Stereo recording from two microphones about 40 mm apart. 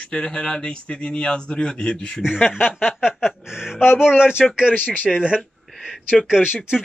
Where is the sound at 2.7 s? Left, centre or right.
Centre.